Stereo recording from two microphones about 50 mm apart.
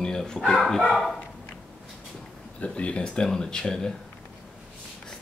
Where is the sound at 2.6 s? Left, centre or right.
Left.